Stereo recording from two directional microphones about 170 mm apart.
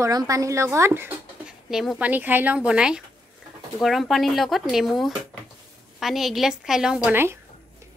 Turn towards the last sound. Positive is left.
turn(degrees=-10)  # may be behind; listen again after turning